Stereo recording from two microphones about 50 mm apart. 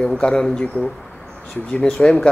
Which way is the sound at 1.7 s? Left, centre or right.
Centre.